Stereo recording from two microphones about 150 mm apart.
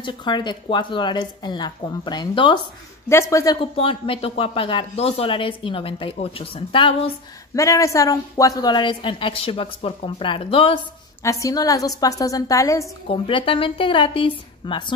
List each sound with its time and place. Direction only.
0.0 s a woman's voice: 30° left (ahead or behind)
3.1 s a woman's voice: 20° left (ahead or behind)
3.7 s a woman's voice: 40° left (ahead or behind)
7.5 s a woman's voice: 20° left (ahead or behind); by 10.8 s 40° left (ahead or behind)
11.2 s a woman's voice: 20° left (ahead or behind)
13.1 s a woman's voice: 35° left (ahead or behind)